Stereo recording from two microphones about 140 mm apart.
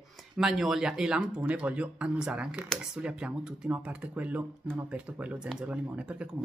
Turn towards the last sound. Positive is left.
turn(degrees=-10)  # may be behind; listen again after turning